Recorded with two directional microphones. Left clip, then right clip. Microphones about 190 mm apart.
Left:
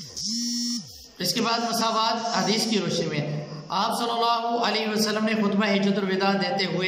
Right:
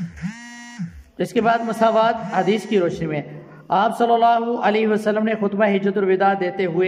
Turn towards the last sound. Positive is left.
turn(degrees=-45)  # may be behind; listen again after turning